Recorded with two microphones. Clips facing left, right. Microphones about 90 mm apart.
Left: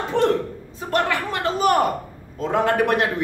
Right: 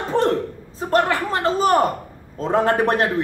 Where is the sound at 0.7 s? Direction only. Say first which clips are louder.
Right 3 dB; 35° right (ahead or behind).